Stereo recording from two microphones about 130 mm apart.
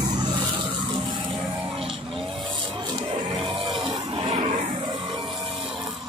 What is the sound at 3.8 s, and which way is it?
Music, 45° right (ahead or behind).